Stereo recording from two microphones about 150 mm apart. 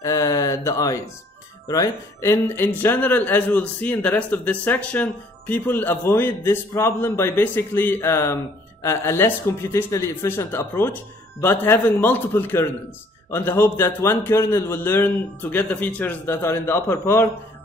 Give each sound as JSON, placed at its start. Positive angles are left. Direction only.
{"t": 0.0, "sound": "speech", "side_deg": 20}